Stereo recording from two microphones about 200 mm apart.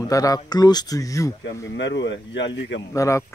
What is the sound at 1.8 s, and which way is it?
Speech, 65° left (ahead or behind).